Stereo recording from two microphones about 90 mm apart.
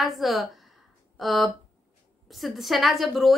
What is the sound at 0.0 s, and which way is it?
A woman's voice, centre (ahead or behind).